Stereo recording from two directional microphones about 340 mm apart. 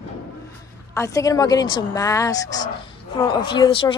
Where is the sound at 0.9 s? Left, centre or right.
Centre.